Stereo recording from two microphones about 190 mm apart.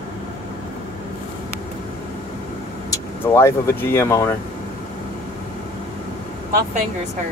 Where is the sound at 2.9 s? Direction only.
15° left (ahead or behind).